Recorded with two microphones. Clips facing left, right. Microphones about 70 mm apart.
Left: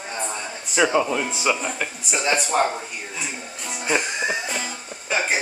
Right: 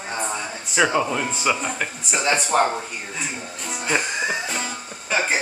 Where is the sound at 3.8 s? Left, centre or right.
Centre.